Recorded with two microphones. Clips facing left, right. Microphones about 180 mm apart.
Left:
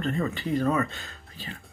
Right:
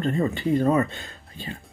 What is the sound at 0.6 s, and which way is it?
Speech, 30° right (ahead or behind).